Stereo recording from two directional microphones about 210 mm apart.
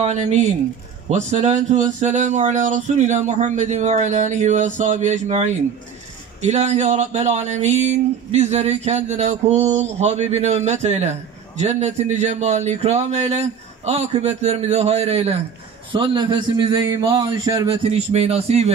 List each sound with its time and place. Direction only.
0.0 s a man's voice: 35° right (ahead or behind)